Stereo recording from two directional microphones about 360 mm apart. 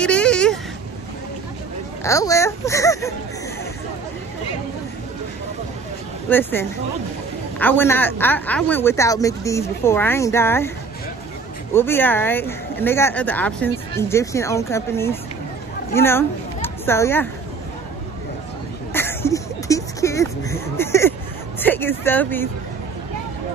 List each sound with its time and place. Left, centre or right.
0.0 s a sound: centre
2.0 s a man's voice: centre
7.5 s a man's voice: centre
11.7 s a man's voice: centre
18.9 s a sound: centre
21.5 s speech: centre